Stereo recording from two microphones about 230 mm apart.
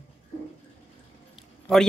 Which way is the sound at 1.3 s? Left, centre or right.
Centre.